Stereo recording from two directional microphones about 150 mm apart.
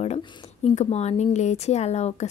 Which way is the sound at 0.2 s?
40° left (ahead or behind).